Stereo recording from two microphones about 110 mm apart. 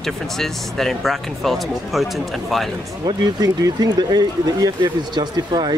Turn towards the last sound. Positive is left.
turn(degrees=-40)  # may be behind; listen again after turning